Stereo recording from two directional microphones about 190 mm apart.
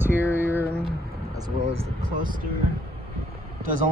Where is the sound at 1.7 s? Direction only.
25° right (ahead or behind).